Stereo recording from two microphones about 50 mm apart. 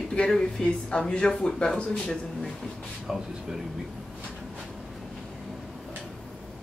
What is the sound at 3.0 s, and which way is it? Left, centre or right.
Speech, centre.